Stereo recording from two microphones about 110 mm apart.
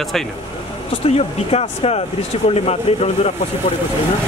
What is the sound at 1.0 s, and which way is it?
Speech, 65° left (ahead or behind).